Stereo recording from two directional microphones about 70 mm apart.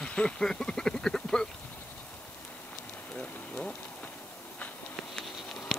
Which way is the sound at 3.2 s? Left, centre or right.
Centre.